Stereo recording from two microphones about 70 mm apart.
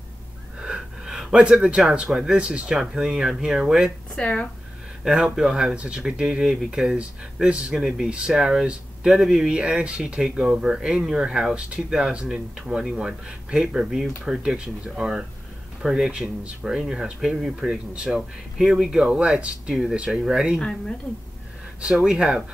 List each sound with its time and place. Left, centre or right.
0.6 s speech: centre
2.8 s speech: centre
4.1 s speech: centre
5.0 s speech: centre
21.8 s speech: centre